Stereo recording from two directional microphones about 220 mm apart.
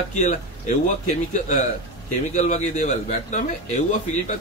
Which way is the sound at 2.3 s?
35° left (ahead or behind).